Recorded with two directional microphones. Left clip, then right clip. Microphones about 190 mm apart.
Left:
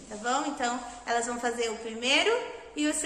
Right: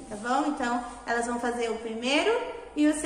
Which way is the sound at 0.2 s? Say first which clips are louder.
Right 2 dB; 10° left (ahead or behind).